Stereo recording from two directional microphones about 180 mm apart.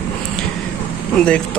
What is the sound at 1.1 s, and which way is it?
Speech, 5° left (ahead or behind).